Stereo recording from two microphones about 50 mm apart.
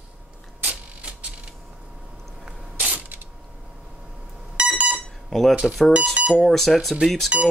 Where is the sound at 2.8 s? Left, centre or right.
Right.